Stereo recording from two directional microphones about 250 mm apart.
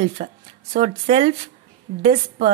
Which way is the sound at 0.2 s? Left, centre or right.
Right.